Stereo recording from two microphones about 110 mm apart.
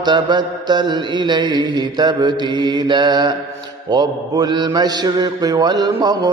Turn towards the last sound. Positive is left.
turn(degrees=-35)  # may be behind; listen again after turning